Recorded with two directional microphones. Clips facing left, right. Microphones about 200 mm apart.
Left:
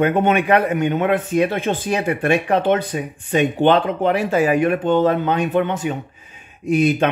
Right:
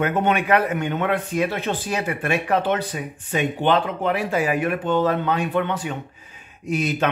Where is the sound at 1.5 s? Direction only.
50° left (ahead or behind).